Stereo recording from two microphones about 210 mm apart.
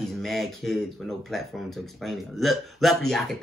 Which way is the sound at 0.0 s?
Centre (ahead or behind).